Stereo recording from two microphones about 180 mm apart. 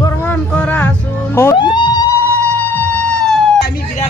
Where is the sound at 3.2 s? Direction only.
5° left (ahead or behind).